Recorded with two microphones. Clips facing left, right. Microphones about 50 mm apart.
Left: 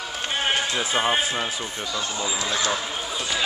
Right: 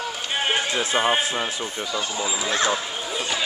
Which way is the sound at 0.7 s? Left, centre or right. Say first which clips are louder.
Right 1 dB; centre.